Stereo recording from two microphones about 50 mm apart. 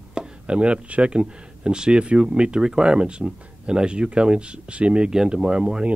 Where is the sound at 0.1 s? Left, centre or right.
Centre.